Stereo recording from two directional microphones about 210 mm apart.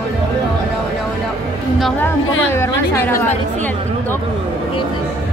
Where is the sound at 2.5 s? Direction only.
10° left (ahead or behind).